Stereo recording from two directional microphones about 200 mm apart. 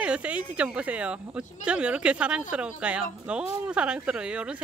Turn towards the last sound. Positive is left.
turn(degrees=-5)  # may be behind; listen again after turning